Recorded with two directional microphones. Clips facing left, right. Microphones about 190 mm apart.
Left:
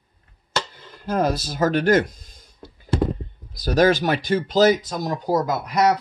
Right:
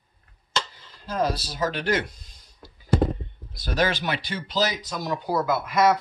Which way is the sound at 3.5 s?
40° left (ahead or behind).